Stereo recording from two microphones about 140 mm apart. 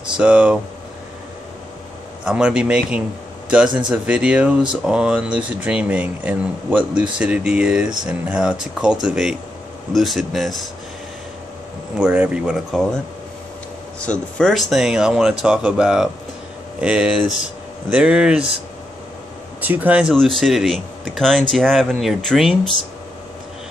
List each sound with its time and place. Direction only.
0.2 s speech: 10° right (ahead or behind)
2.2 s speech: 5° right (ahead or behind)
12.0 s speech: 10° right (ahead or behind)
19.6 s speech: 10° right (ahead or behind)